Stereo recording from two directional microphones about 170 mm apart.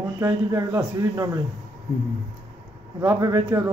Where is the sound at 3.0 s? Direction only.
15° right (ahead or behind).